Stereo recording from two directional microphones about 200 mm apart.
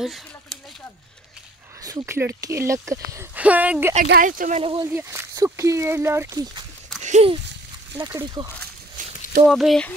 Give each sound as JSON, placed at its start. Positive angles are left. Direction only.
{"t": 1.8, "sound": "speech", "side_deg": -15}
{"t": 4.1, "sound": "speech", "side_deg": -45}
{"t": 4.9, "sound": "speech", "side_deg": -15}
{"t": 7.0, "sound": "a sound", "side_deg": -35}
{"t": 8.0, "sound": "speech", "side_deg": -20}
{"t": 9.0, "sound": "a sound", "side_deg": -40}
{"t": 9.5, "sound": "speech", "side_deg": 0}